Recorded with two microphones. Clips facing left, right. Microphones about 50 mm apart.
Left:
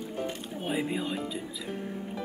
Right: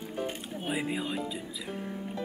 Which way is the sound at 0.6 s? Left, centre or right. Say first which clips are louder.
Left 2 dB; centre.